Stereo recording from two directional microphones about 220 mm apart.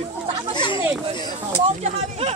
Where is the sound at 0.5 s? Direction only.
20° left (ahead or behind).